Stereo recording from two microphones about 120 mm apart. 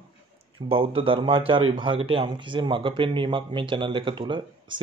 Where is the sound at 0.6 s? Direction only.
50° right (ahead or behind).